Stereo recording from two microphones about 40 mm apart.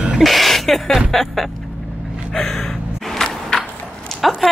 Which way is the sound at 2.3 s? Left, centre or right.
Centre.